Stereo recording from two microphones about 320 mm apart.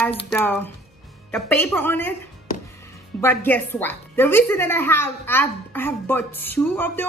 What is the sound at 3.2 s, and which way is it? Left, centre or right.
A woman's voice, centre.